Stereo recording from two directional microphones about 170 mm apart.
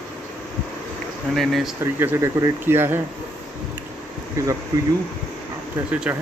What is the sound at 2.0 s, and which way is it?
Speech, 15° right (ahead or behind).